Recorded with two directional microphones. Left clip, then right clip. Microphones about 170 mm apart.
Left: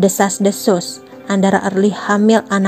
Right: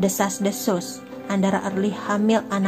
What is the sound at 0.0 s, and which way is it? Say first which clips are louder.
A woman's voice: left 9 dB; 40° left (ahead or behind).